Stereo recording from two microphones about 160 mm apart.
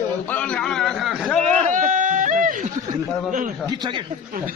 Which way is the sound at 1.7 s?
55° right (ahead or behind).